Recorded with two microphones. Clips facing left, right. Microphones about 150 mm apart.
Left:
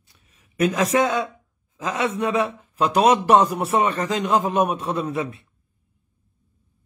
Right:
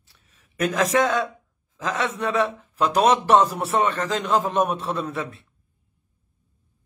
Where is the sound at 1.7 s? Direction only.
10° left (ahead or behind).